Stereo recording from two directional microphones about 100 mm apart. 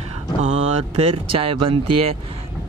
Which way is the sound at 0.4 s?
90° right.